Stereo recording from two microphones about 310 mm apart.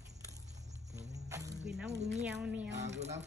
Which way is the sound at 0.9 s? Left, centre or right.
Centre.